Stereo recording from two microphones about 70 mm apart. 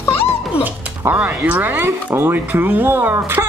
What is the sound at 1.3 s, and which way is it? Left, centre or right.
Speech, right.